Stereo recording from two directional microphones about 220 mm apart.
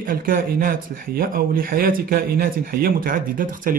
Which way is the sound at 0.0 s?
40° right (ahead or behind).